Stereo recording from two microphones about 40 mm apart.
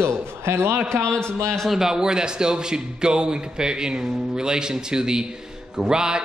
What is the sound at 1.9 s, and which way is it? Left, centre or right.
A man's voice, centre.